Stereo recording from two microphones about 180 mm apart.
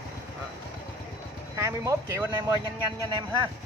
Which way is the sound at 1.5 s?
15° right (ahead or behind).